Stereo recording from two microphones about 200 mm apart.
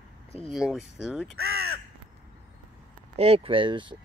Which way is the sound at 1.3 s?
55° right (ahead or behind).